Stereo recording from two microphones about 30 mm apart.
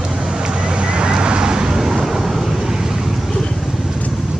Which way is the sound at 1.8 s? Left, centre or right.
Centre.